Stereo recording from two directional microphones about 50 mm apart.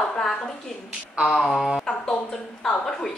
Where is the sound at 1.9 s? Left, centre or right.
Left.